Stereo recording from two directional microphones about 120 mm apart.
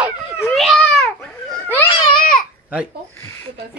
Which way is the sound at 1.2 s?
10° left (ahead or behind).